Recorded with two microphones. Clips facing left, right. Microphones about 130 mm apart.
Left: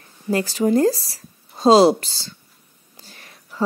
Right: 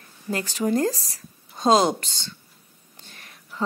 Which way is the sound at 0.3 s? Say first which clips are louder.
Left 5 dB; 35° left (ahead or behind).